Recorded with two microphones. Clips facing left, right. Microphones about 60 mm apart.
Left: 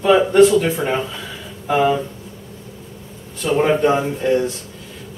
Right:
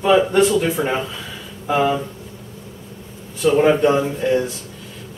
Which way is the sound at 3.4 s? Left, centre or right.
Centre.